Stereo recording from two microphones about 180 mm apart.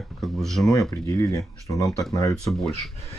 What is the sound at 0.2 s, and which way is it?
Speech, centre (ahead or behind).